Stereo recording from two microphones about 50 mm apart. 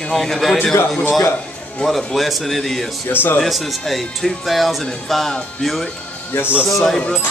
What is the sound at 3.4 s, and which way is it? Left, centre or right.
Speech, centre.